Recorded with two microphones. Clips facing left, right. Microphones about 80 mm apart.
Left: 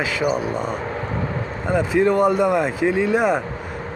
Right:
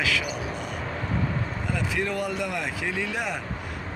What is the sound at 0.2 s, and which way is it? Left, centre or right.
Speech, left.